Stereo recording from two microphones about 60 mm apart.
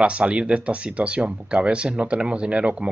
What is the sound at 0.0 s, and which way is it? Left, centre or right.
Speech, centre.